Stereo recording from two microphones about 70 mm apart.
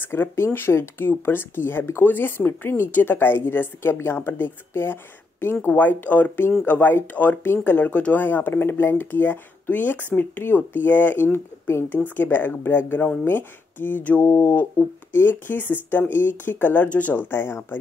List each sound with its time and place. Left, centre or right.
0.0 s speech: left
17.3 s speech: left